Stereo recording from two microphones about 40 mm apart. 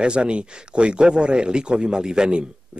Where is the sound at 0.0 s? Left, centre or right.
Right.